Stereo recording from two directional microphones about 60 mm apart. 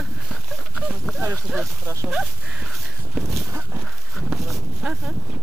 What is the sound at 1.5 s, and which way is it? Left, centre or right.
Speech, centre.